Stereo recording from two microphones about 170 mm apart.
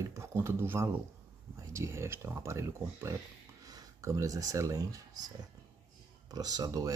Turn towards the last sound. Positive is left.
turn(degrees=-20)  # may be behind; listen again after turning